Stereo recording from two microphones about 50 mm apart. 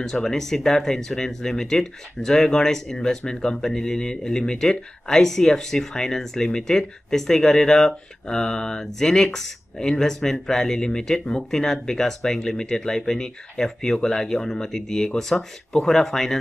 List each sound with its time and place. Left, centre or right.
0.0 s speech: centre